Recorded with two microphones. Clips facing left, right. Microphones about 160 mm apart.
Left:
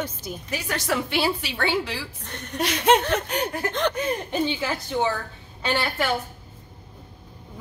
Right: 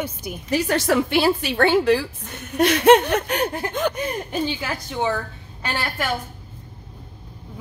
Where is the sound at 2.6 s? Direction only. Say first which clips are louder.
Right 6 dB; 60° right (ahead or behind).